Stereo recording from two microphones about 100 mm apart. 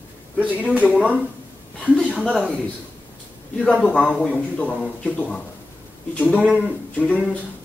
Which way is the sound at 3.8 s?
15° left (ahead or behind).